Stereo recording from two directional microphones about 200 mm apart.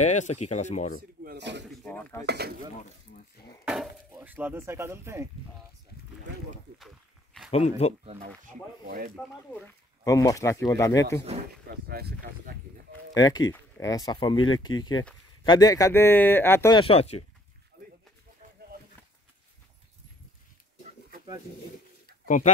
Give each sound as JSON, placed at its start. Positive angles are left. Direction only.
{"t": 0.0, "sound": "speech", "side_deg": 35}
{"t": 1.2, "sound": "a sound", "side_deg": -55}
{"t": 1.8, "sound": "speech", "side_deg": 5}
{"t": 2.2, "sound": "speech", "side_deg": -55}
{"t": 3.6, "sound": "speech", "side_deg": 0}
{"t": 7.5, "sound": "speech", "side_deg": 35}
{"t": 8.0, "sound": "speech", "side_deg": -30}
{"t": 8.5, "sound": "speech", "side_deg": -45}
{"t": 10.0, "sound": "speech", "side_deg": 15}
{"t": 11.7, "sound": "speech", "side_deg": -50}
{"t": 13.1, "sound": "speech", "side_deg": 20}
{"t": 16.7, "sound": "speech", "side_deg": 30}
{"t": 22.2, "sound": "a sound", "side_deg": 40}